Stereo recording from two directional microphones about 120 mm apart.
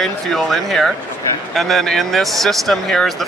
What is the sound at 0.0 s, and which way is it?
Speech, centre (ahead or behind).